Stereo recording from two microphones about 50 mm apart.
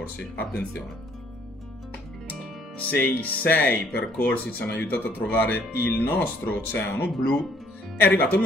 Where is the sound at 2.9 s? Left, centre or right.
Left.